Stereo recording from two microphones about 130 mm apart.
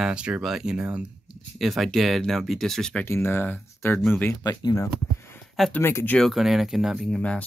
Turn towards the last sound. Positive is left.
turn(degrees=10)  # may be behind; listen again after turning